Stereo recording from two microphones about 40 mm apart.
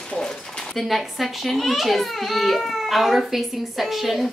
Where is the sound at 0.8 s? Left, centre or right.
Centre.